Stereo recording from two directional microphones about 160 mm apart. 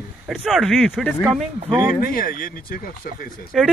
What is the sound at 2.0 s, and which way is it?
Speech, 65° left (ahead or behind).